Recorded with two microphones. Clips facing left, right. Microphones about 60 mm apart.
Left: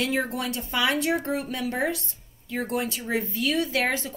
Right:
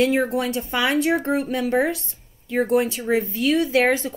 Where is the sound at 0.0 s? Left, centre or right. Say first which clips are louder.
Right 7 dB; right.